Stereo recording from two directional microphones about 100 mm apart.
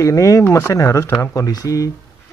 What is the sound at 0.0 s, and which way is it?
Speech, 30° left (ahead or behind).